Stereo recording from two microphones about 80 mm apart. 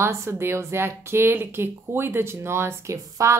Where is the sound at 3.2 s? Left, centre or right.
Right.